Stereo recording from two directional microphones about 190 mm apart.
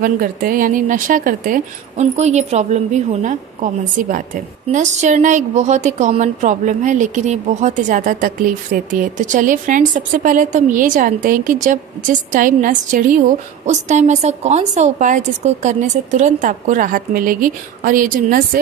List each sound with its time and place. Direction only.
0.0 s a woman's voice: 50° right (ahead or behind)